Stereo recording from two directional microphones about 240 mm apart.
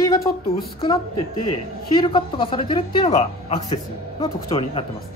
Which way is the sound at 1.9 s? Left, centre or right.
Left.